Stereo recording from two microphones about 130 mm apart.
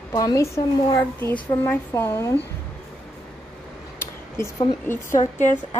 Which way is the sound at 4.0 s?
20° left (ahead or behind).